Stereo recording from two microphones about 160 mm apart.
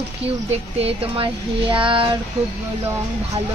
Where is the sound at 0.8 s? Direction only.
35° right (ahead or behind).